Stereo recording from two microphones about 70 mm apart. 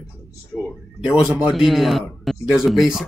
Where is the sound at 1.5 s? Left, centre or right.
Centre.